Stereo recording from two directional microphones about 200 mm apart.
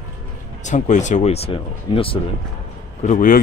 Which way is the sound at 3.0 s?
40° left (ahead or behind).